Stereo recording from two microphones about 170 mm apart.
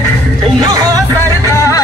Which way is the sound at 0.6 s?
20° right (ahead or behind).